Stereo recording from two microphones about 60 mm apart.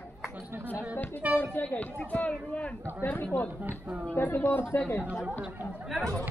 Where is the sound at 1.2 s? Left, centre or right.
Right.